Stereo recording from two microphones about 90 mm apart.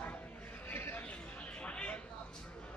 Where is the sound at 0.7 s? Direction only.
20° left (ahead or behind).